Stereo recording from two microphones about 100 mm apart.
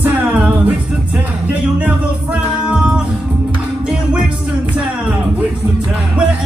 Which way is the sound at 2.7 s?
10° right (ahead or behind).